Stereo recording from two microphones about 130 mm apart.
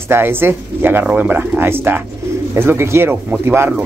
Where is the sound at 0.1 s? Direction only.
15° right (ahead or behind).